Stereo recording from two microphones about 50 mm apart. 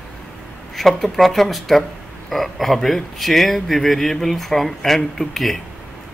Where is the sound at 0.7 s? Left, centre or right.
Centre.